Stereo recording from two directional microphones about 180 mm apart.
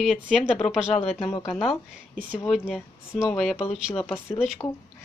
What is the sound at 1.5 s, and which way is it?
Speech, centre (ahead or behind).